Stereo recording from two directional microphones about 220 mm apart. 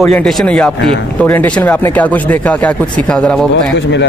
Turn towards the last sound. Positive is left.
turn(degrees=5)  # may be behind; listen again after turning